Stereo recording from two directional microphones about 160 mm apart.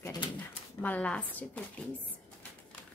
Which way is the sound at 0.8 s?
10° left (ahead or behind).